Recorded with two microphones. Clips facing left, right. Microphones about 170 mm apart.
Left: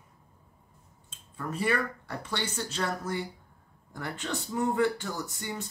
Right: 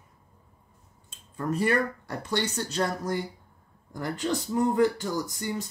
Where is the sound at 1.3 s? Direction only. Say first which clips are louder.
Right 4 dB; 40° right (ahead or behind).